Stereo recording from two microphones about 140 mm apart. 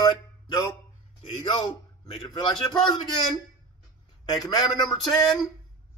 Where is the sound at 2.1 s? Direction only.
30° left (ahead or behind).